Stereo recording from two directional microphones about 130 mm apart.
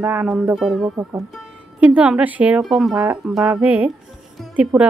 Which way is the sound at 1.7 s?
10° right (ahead or behind).